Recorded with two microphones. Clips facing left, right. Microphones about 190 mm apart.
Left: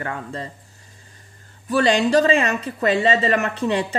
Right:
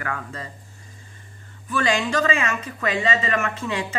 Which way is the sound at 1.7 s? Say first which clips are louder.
Left 6 dB; 35° left (ahead or behind).